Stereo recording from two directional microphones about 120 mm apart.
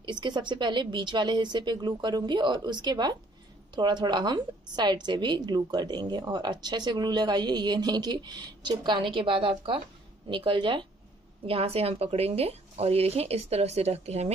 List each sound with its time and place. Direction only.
0.0 s a woman's voice: 40° right (ahead or behind)
11.4 s speech: 55° right (ahead or behind)